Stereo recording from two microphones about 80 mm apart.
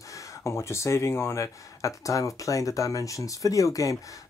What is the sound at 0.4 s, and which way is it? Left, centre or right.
Speech, left.